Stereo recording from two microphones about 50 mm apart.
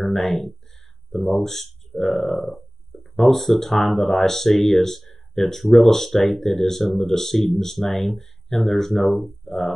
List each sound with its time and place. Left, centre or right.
0.0 s speech: centre
2.4 s burping: left
3.0 s speech: centre